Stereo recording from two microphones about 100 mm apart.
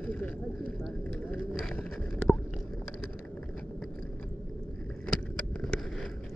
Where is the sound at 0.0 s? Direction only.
15° left (ahead or behind).